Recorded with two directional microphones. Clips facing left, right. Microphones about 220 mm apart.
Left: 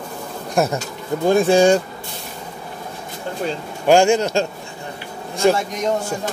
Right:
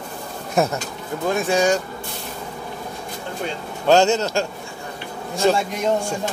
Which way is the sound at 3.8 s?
10° left (ahead or behind).